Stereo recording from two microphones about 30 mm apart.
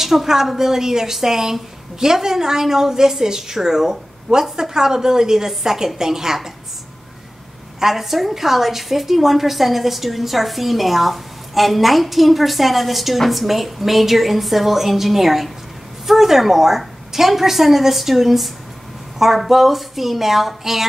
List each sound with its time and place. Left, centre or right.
0.0 s a woman's voice: centre
7.8 s a woman's voice: centre